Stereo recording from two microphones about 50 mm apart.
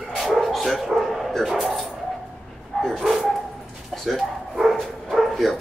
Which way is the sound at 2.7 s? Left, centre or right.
Centre.